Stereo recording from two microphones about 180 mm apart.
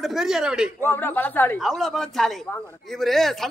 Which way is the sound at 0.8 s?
10° left (ahead or behind).